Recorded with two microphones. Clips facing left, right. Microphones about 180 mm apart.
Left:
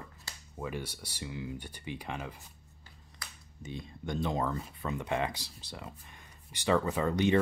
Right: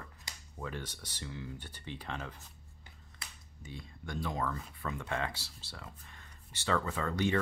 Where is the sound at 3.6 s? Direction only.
20° left (ahead or behind).